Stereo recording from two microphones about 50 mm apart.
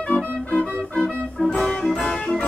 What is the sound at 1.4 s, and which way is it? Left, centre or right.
Music, centre.